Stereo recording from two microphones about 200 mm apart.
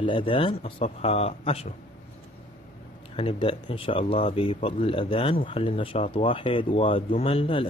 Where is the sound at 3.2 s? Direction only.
25° left (ahead or behind).